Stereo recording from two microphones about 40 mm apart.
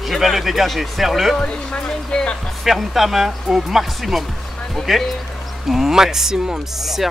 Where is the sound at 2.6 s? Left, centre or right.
Centre.